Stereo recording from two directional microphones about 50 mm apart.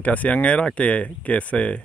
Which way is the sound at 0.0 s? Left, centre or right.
Left.